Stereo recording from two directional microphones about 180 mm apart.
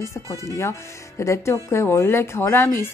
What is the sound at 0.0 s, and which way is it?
Speech, 15° left (ahead or behind).